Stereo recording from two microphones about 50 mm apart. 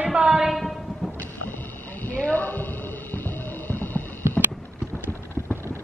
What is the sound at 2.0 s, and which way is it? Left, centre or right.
Music, left.